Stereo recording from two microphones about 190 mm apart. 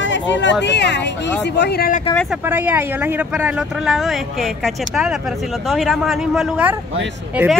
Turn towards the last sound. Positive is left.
turn(degrees=-5)  # may be behind; listen again after turning